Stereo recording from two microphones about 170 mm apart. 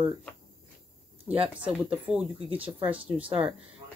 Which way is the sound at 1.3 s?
35° right (ahead or behind).